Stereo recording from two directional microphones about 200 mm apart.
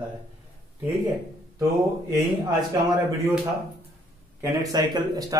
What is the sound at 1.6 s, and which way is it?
Speech, 20° right (ahead or behind).